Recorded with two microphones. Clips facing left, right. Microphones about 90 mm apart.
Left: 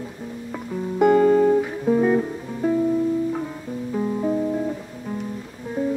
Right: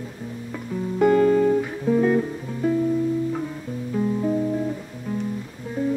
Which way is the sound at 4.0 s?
15° left (ahead or behind).